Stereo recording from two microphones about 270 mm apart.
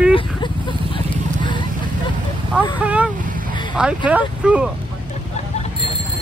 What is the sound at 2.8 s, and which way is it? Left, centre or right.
Speech, centre.